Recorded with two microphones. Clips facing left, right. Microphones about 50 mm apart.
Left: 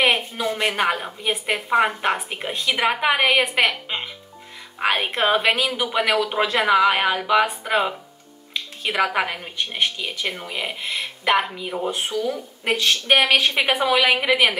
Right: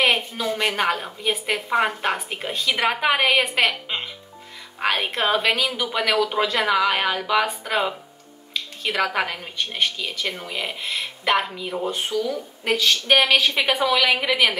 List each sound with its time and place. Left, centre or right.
0.0 s a woman's voice: centre